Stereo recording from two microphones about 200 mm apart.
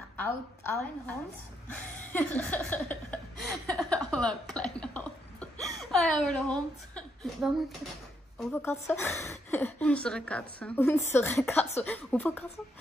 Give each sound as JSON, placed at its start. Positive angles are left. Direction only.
{"t": 0.2, "sound": "a woman's voice", "side_deg": 10}
{"t": 1.7, "sound": "a sound", "side_deg": 5}
{"t": 8.6, "sound": "a woman's voice", "side_deg": 10}